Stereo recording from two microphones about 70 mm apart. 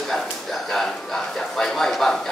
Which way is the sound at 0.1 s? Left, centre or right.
Centre.